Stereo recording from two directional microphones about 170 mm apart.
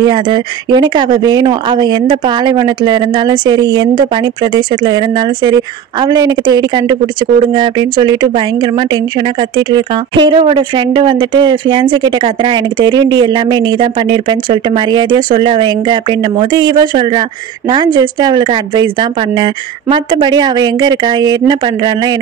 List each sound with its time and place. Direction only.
0.0 s speech: 25° right (ahead or behind)